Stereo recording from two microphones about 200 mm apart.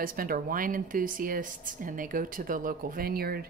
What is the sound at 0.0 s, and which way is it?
A woman's voice, 45° right (ahead or behind).